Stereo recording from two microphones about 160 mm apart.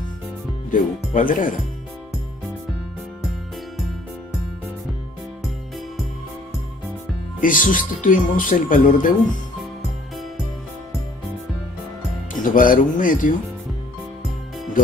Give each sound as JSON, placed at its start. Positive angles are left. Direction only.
{"t": 0.7, "sound": "speech", "side_deg": 55}
{"t": 7.3, "sound": "speech", "side_deg": 55}
{"t": 12.4, "sound": "speech", "side_deg": 55}